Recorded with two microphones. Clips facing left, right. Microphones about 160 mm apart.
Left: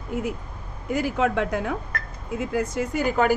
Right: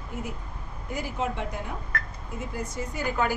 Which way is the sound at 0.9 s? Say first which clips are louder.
Left 8 dB; 90° left.